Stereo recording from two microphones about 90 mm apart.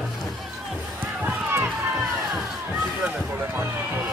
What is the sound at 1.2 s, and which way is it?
Run, 20° right (ahead or behind).